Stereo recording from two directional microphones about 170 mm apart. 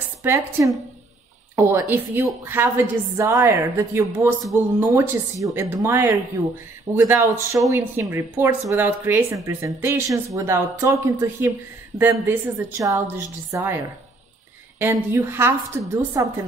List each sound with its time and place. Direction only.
0.2 s a woman's voice: 15° right (ahead or behind)
14.8 s a woman's voice: 15° right (ahead or behind)